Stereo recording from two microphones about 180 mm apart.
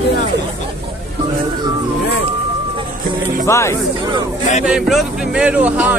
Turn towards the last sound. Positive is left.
turn(degrees=-10)  # may be behind; listen again after turning